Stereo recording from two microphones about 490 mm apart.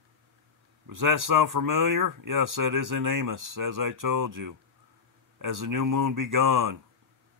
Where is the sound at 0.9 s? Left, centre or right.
Right.